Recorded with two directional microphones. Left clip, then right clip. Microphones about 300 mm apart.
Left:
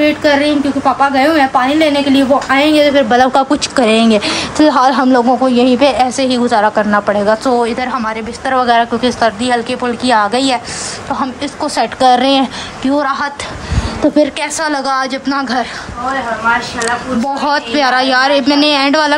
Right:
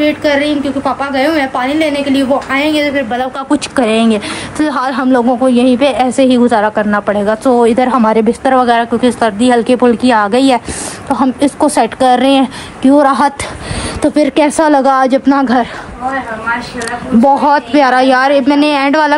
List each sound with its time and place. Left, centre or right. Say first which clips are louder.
0.0 s a woman's voice: left 1 dB; centre
14.3 s a woman's voice: right 7 dB; centre
17.4 s a woman's voice: right 4 dB; centre